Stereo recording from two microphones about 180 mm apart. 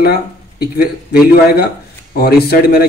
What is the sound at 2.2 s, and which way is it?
Speech, 60° left (ahead or behind).